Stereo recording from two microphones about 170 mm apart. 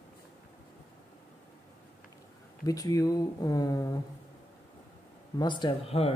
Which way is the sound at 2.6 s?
20° left (ahead or behind).